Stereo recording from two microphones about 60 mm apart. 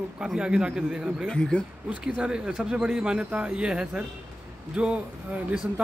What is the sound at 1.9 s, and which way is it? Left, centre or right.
Speech, centre.